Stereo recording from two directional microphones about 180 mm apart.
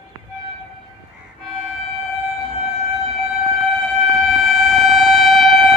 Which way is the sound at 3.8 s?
Centre (ahead or behind).